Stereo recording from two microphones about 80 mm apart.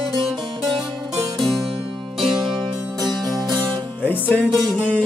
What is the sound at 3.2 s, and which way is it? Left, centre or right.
Music, right.